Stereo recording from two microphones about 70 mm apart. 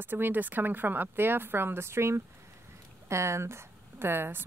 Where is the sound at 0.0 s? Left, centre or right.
Right.